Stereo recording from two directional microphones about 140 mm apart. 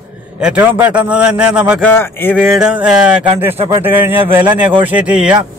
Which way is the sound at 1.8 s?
15° left (ahead or behind).